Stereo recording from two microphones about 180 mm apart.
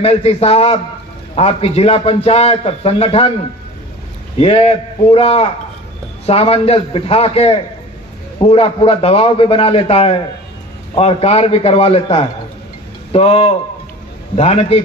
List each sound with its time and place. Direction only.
0.0 s a man's voice: 35° left (ahead or behind)
4.4 s a man's voice: 35° left (ahead or behind)